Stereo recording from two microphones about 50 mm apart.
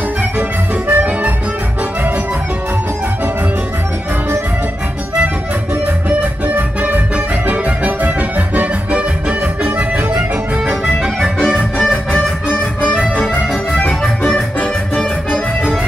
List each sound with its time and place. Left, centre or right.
0.8 s music: right
6.0 s music: right
11.3 s music: centre
11.8 s music: left
13.8 s music: centre